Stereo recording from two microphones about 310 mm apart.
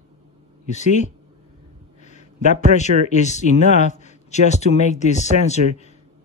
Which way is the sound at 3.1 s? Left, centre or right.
Left.